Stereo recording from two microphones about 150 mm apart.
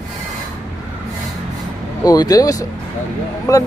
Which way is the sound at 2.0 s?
25° left (ahead or behind).